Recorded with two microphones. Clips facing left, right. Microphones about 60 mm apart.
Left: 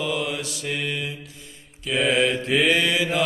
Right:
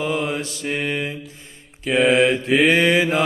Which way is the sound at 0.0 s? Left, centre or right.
Right.